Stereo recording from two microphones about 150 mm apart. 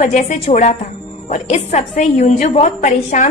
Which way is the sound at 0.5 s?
50° left (ahead or behind).